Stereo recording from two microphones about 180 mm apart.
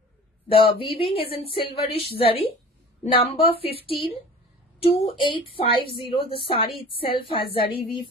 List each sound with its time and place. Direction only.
0.5 s a woman's voice: 30° left (ahead or behind)